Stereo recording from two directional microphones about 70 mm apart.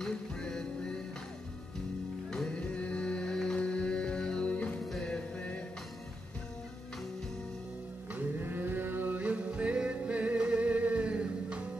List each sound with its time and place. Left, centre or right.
0.0 s music: centre
2.3 s music: centre
8.1 s music: right